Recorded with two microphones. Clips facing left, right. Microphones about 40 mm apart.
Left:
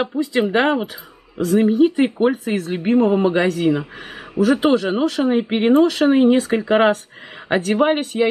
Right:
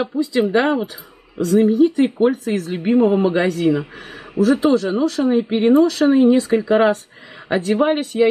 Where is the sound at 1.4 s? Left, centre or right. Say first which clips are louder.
Right 1 dB; centre.